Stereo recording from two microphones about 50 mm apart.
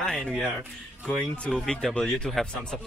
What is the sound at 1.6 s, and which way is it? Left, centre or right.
Speech, centre.